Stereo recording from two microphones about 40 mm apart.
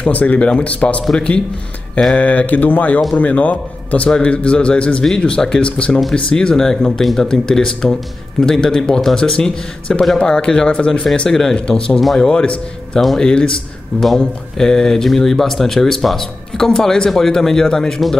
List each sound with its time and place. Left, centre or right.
0.0 s a man's voice: left
2.1 s a man's voice: left; by 11.5 s centre
11.5 s a man's voice: left